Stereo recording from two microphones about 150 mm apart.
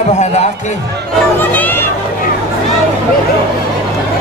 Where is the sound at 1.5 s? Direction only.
15° left (ahead or behind).